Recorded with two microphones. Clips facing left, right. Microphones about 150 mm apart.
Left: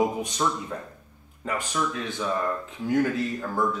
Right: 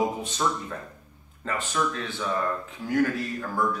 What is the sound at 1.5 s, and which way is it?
Speech, 15° left (ahead or behind).